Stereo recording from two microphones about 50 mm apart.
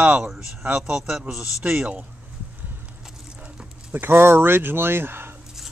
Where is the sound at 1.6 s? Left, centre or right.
Centre.